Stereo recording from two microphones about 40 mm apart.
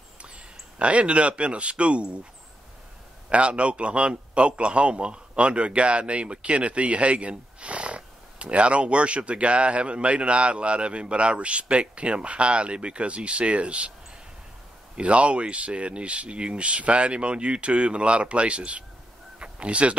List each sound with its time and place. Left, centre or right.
0.7 s a man's voice: right
3.3 s a man's voice: right
15.0 s a man's voice: right